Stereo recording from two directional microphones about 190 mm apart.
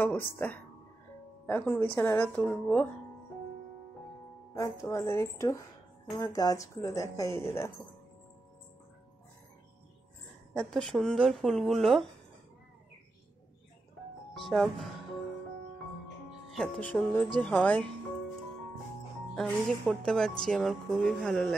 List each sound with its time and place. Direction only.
0.0 s a woman's voice: 10° left (ahead or behind)
4.6 s a woman's voice: 15° left (ahead or behind)
10.5 s speech: centre (ahead or behind)
14.3 s speech: centre (ahead or behind)
16.3 s a woman's voice: centre (ahead or behind)
19.3 s speech: 5° left (ahead or behind)